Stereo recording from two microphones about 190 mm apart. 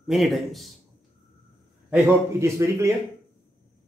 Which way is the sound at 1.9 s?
10° right (ahead or behind).